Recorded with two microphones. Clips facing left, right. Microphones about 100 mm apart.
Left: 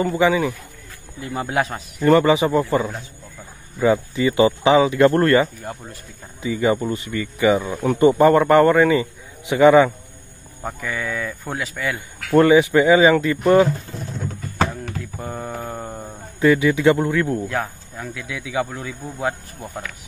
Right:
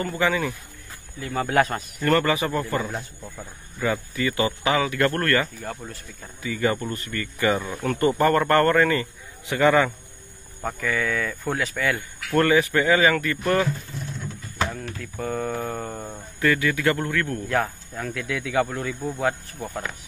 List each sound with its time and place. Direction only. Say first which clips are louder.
0.0 s speech: left 6 dB; 15° left (ahead or behind)
1.5 s speech: right 2 dB; centre (ahead or behind)
2.0 s speech: left 7 dB; 15° left (ahead or behind)
12.3 s speech: left 6 dB; 15° left (ahead or behind)
13.9 s a sound: left 4 dB; 40° left (ahead or behind)
15.0 s speech: right 1 dB; 15° left (ahead or behind)
16.3 s speech: left 6 dB; 20° left (ahead or behind)
17.5 s speech: right 1 dB; 5° left (ahead or behind)